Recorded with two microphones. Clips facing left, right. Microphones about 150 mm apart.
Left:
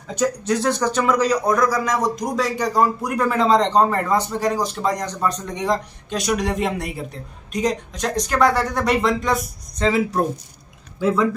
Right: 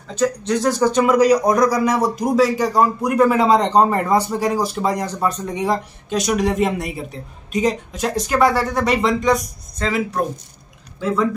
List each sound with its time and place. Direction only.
0.1 s speech: 10° left (ahead or behind)
9.8 s speech: 25° left (ahead or behind)
11.0 s speech: 10° left (ahead or behind)